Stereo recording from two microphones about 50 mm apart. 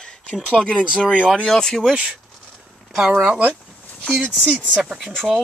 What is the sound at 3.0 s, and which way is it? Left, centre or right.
Speech, right.